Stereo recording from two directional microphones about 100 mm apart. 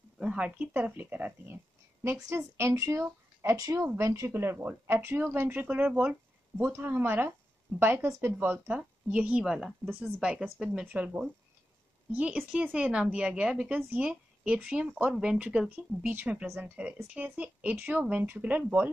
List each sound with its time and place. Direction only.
0.2 s speech: 10° right (ahead or behind)
2.1 s speech: 30° right (ahead or behind)